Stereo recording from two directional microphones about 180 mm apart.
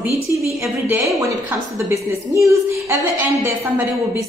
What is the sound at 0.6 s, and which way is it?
Speech, 5° right (ahead or behind).